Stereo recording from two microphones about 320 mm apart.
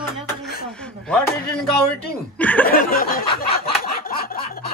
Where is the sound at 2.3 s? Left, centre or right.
Centre.